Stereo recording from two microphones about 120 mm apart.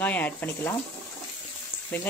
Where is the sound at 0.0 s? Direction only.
15° left (ahead or behind).